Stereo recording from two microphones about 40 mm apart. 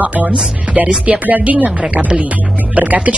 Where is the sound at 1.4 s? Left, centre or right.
Right.